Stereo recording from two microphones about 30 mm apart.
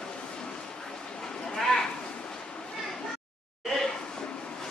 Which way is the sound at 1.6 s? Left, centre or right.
Centre.